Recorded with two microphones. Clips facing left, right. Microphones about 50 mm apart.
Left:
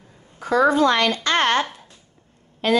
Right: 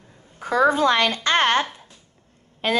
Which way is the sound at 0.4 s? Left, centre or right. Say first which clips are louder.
Left 1 dB; right.